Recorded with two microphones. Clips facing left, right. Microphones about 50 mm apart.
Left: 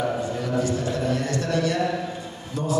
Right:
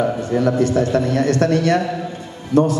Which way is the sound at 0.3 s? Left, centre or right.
Right.